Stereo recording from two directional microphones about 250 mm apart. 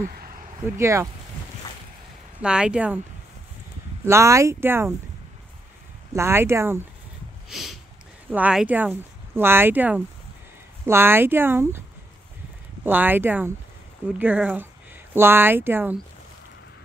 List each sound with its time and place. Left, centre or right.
0.0 s speech: right
0.7 s speech: centre
2.4 s speech: centre
4.0 s speech: centre
6.1 s speech: centre
7.4 s a sound: centre
8.3 s speech: centre
12.8 s speech: centre